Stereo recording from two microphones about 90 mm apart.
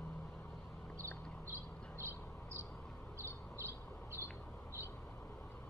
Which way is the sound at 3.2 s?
30° right (ahead or behind).